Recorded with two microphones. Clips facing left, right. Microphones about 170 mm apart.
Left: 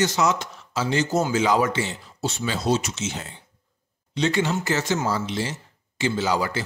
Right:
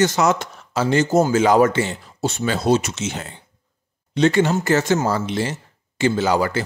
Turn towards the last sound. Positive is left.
turn(degrees=-55)  # may be behind; listen again after turning